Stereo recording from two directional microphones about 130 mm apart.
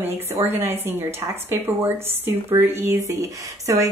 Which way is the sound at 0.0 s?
15° right (ahead or behind).